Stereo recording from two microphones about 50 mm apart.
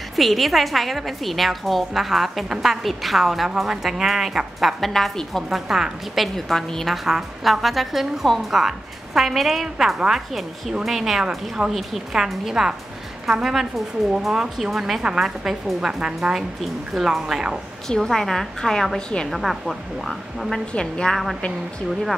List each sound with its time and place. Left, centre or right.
0.1 s a woman's voice: centre
4.7 s a woman's voice: centre
7.1 s a woman's voice: centre
11.2 s speech: centre
11.7 s a woman's voice: centre
17.8 s a woman's voice: centre
19.3 s a woman's voice: centre
20.7 s a woman's voice: centre